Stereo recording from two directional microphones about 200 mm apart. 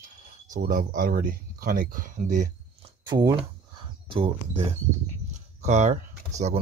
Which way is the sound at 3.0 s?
20° right (ahead or behind).